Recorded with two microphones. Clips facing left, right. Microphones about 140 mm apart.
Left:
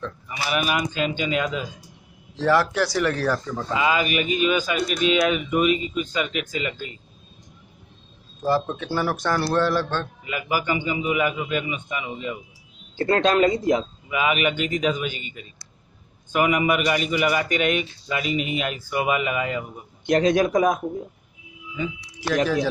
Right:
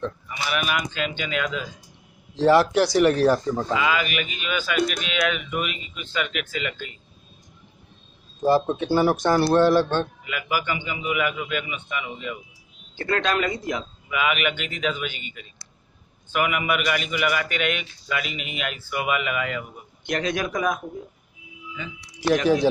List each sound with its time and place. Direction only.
0.5 s a man's voice: 30° left (ahead or behind)
2.3 s speech: 20° right (ahead or behind)
3.7 s a man's voice: 30° left (ahead or behind)
8.4 s speech: 20° right (ahead or behind)
10.7 s a man's voice: 40° left (ahead or behind)